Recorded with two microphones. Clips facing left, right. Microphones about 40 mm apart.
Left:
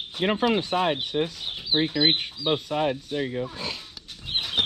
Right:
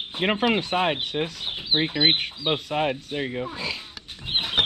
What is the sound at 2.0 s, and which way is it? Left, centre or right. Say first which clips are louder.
Speech: right 1 dB; right.